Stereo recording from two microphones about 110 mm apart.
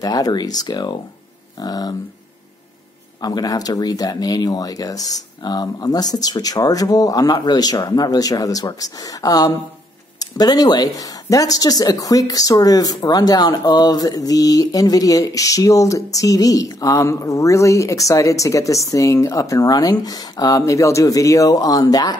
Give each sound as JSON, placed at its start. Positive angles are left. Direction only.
{"t": 0.0, "sound": "speech", "side_deg": 35}
{"t": 3.2, "sound": "speech", "side_deg": 35}